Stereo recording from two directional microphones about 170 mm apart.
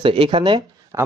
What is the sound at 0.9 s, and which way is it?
Speech, 20° right (ahead or behind).